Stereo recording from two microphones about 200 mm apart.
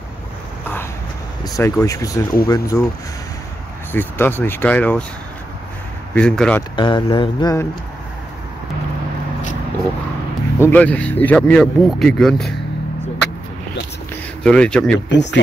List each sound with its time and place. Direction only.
1.4 s speech: 15° left (ahead or behind)
2.4 s mantra: 20° left (ahead or behind)
3.9 s speech: 10° left (ahead or behind)
6.1 s speech: 5° left (ahead or behind)
6.8 s mantra: 20° left (ahead or behind)
10.6 s speech: 10° left (ahead or behind)
14.4 s speech: 5° left (ahead or behind)
15.0 s speech: 60° left (ahead or behind)